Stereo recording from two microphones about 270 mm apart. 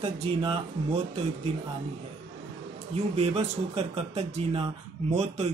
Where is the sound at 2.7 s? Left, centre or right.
Right.